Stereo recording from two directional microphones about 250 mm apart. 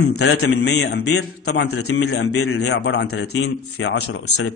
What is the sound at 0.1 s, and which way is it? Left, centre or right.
A man's voice, left.